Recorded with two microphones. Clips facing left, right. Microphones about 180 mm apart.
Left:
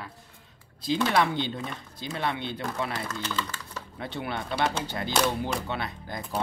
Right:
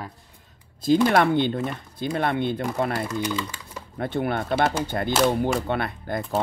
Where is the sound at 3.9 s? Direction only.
50° right (ahead or behind).